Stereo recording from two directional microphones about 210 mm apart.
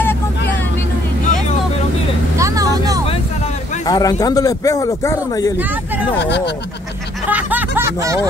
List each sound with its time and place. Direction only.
2.3 s vehicle: 15° right (ahead or behind)
3.8 s a man's voice: 15° left (ahead or behind)
6.1 s speech: 55° left (ahead or behind)
7.2 s snicker: 10° right (ahead or behind)